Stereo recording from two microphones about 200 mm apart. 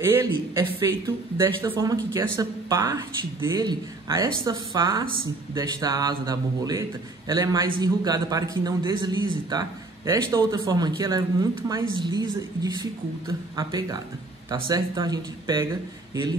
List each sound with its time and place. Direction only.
0.0 s a man's voice: 15° right (ahead or behind)